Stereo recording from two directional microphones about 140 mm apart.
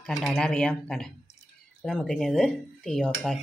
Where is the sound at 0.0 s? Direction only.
Centre (ahead or behind).